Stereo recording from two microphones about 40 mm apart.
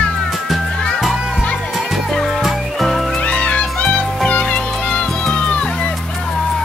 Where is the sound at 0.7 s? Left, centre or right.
Centre.